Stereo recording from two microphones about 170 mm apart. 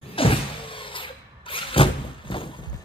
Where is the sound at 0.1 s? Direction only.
30° left (ahead or behind).